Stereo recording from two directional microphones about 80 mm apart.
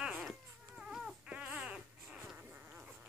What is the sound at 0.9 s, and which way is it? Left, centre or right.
Baby cry, centre.